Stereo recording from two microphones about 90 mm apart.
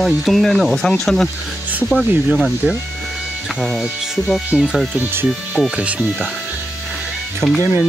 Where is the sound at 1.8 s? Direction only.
15° left (ahead or behind).